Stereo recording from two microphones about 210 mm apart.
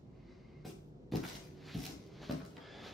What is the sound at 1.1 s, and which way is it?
Cupboard open or close, centre (ahead or behind).